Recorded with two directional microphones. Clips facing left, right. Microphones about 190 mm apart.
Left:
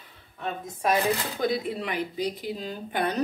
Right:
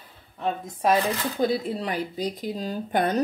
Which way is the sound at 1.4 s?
30° right (ahead or behind).